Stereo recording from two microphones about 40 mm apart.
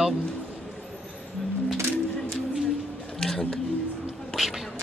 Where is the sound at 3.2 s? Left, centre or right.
Centre.